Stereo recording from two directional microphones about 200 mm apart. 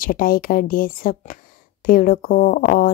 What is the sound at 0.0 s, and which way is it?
Speech, 45° left (ahead or behind).